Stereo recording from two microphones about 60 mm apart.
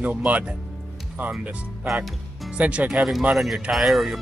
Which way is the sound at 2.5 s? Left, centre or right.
Right.